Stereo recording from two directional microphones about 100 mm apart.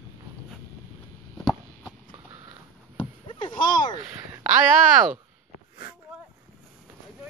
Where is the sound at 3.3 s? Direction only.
50° left (ahead or behind).